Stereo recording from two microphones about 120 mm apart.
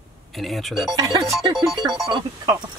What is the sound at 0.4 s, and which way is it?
Speech, centre (ahead or behind).